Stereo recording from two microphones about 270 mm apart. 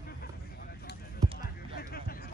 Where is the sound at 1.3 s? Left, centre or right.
Left.